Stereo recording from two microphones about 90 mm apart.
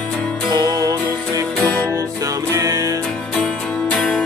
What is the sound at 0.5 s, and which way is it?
Music, 50° right (ahead or behind).